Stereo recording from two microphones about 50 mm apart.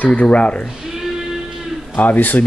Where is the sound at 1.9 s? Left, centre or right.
Left.